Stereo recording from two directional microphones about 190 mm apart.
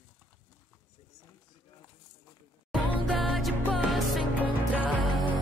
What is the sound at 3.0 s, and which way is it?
Music, centre (ahead or behind).